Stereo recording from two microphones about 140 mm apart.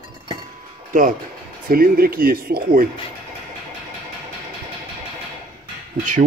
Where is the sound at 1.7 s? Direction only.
90° right.